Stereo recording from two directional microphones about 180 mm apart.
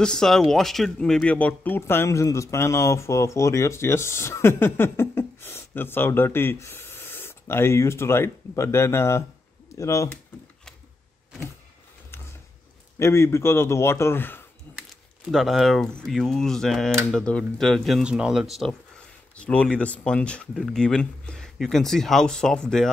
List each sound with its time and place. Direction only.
0.0 s speech: 5° left (ahead or behind)
13.0 s speech: 15° left (ahead or behind)
15.3 s speech: centre (ahead or behind)